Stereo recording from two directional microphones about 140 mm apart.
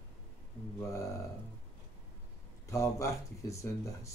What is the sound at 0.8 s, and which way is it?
Speech, 20° left (ahead or behind).